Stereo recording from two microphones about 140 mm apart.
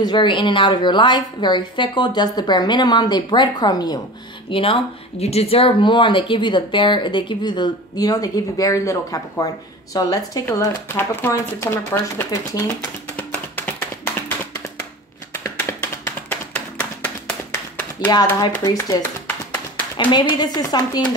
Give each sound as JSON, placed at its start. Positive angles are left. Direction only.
{"t": 0.0, "sound": "speech", "side_deg": 35}
{"t": 4.5, "sound": "speech", "side_deg": 40}
{"t": 13.1, "sound": "a sound", "side_deg": 10}
{"t": 15.3, "sound": "tap", "side_deg": 15}
{"t": 18.6, "sound": "speech", "side_deg": 25}
{"t": 20.0, "sound": "speech", "side_deg": 35}